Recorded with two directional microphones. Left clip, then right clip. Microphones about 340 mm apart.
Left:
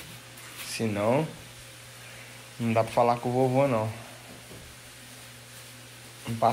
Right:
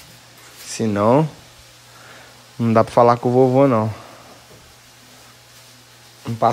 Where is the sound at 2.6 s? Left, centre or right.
Right.